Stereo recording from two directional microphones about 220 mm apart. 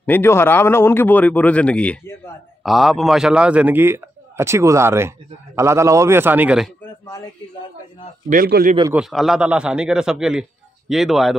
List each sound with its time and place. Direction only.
0.0 s a man's voice: 10° left (ahead or behind)
8.3 s a man's voice: 40° right (ahead or behind)
8.9 s a man's voice: centre (ahead or behind)